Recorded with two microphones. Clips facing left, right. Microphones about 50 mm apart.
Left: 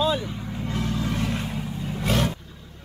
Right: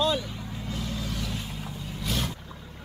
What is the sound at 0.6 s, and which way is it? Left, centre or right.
Vehicle, left.